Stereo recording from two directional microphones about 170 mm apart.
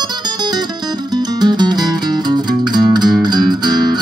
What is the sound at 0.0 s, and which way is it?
Music, 25° right (ahead or behind).